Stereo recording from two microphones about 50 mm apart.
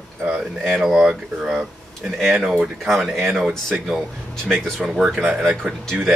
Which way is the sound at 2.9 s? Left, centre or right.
Centre.